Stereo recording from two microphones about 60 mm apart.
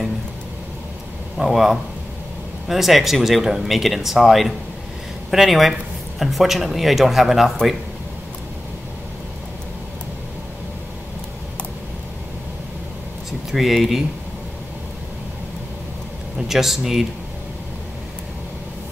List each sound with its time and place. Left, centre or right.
1.4 s speech: centre
13.5 s speech: centre
16.3 s speech: centre